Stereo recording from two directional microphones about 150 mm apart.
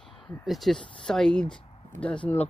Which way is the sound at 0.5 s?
Centre (ahead or behind).